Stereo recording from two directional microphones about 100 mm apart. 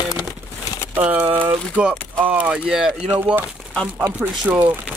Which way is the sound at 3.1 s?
20° right (ahead or behind).